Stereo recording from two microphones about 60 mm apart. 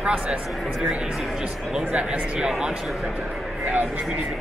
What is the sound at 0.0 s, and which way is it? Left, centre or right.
Speech, centre.